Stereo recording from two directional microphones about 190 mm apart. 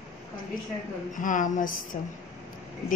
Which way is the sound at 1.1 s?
45° left (ahead or behind).